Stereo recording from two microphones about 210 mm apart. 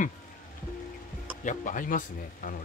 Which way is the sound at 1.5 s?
40° left (ahead or behind).